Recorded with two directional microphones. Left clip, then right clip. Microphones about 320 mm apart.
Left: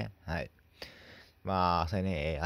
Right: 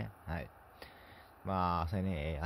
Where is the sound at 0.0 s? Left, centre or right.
Centre.